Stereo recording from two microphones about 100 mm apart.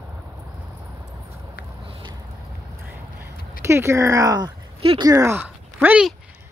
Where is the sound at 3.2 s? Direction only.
25° right (ahead or behind).